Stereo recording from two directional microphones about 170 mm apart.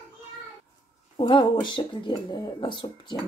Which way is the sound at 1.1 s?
30° left (ahead or behind).